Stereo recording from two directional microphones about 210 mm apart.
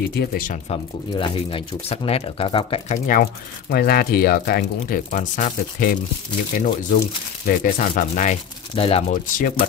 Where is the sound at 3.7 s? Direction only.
45° left (ahead or behind).